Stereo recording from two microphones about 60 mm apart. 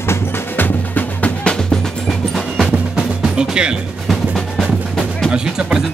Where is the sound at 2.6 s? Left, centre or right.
Centre.